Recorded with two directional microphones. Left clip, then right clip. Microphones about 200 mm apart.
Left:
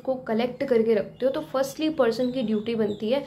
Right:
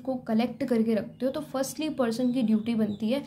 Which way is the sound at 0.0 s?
25° right (ahead or behind).